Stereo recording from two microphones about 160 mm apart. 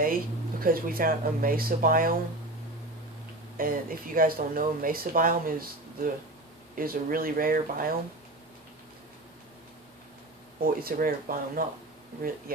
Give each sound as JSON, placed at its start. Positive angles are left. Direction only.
{"t": 0.0, "sound": "speech", "side_deg": -65}
{"t": 3.5, "sound": "speech", "side_deg": -60}
{"t": 6.7, "sound": "speech", "side_deg": -65}
{"t": 10.6, "sound": "speech", "side_deg": -65}